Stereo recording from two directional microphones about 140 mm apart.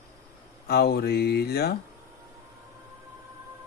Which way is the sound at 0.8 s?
90° left.